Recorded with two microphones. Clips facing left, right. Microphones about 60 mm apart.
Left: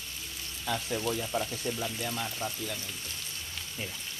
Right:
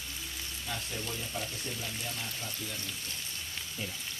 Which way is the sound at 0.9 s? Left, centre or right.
Left.